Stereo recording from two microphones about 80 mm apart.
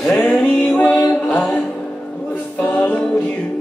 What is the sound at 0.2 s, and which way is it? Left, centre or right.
Music, centre.